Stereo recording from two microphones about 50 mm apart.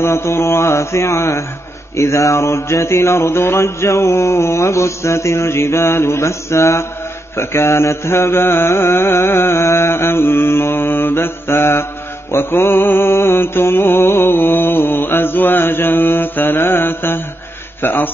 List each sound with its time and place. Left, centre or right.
0.0 s mantra: left
2.0 s mantra: left